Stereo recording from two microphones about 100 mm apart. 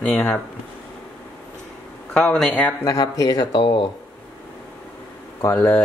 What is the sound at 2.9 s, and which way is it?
Speech, 35° left (ahead or behind).